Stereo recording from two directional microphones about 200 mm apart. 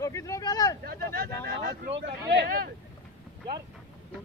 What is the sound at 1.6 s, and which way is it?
Speech, 55° right (ahead or behind).